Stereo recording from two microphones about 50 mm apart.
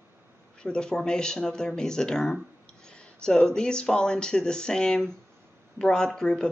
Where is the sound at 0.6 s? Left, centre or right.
Centre.